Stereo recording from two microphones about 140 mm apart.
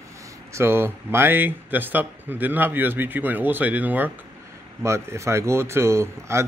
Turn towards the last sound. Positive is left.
turn(degrees=-20)  # may be behind; listen again after turning